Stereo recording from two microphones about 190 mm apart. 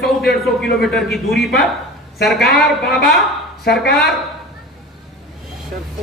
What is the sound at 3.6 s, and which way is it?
Speech, 55° left (ahead or behind).